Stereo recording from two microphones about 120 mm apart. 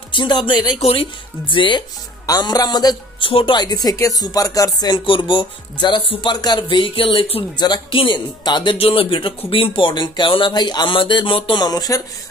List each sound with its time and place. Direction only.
0.1 s speech: 40° left (ahead or behind)
0.7 s speech: 55° left (ahead or behind)
1.5 s speech: 45° left (ahead or behind)
2.2 s a man's voice: 35° left (ahead or behind)
3.3 s speech: 45° left (ahead or behind)
7.5 s speech: 35° left (ahead or behind)
8.7 s speech: 50° left (ahead or behind); by 12.0 s 30° left (ahead or behind)